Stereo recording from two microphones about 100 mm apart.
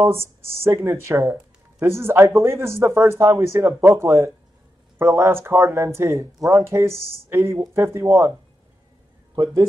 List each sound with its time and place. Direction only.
0.0 s speech: 25° right (ahead or behind)